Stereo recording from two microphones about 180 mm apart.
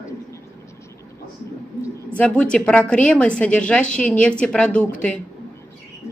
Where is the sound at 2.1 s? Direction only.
5° left (ahead or behind).